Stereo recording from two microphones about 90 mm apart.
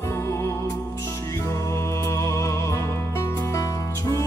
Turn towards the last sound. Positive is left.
turn(degrees=35)  # may be behind; listen again after turning